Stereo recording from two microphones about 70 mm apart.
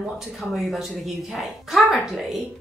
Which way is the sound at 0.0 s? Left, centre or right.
Centre.